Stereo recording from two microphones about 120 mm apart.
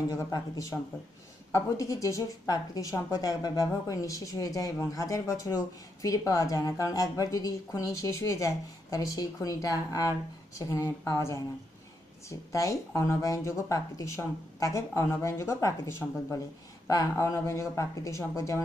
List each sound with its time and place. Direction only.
0.1 s a woman's voice: 25° left (ahead or behind)